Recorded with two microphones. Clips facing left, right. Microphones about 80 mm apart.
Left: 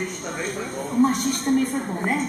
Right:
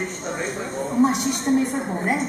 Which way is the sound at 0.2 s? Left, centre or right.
Right.